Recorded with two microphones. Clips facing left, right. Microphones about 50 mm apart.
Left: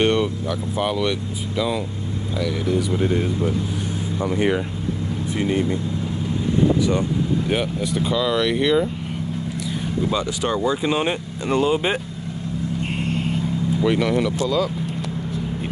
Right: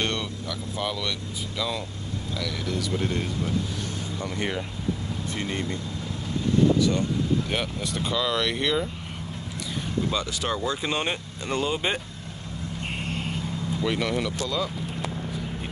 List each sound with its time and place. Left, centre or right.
0.0 s speech: centre
2.4 s speech: centre
6.8 s speech: centre
10.0 s speech: centre
13.0 s vehicle: centre
13.8 s speech: centre